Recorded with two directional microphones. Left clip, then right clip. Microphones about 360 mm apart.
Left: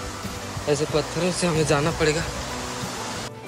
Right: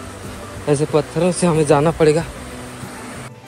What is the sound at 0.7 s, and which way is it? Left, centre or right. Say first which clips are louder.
Speech: right 6 dB; centre.